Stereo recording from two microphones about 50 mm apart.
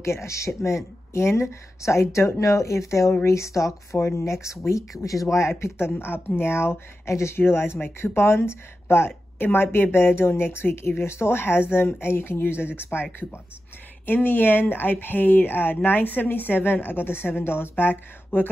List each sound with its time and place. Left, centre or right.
0.0 s speech: left
7.3 s speech: left
12.9 s speech: left
14.0 s speech: left